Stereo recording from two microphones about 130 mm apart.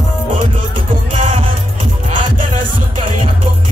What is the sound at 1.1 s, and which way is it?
Music, 45° right (ahead or behind).